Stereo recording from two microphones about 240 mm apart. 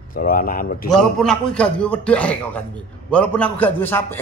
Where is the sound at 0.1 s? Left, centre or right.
Left.